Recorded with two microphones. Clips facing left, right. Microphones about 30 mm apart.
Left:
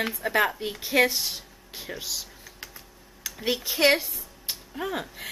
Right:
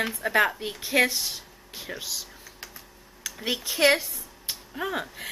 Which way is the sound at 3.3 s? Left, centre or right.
Centre.